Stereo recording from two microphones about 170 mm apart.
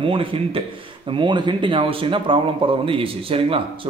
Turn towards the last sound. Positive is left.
turn(degrees=-35)  # may be behind; listen again after turning